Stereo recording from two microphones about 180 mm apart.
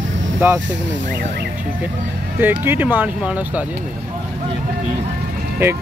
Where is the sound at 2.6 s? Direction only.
10° right (ahead or behind).